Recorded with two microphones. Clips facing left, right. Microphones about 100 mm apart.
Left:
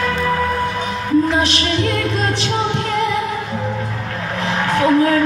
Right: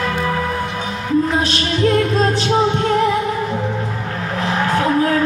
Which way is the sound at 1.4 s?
35° right (ahead or behind).